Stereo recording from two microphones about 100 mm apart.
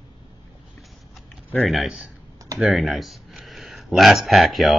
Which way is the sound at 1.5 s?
Centre (ahead or behind).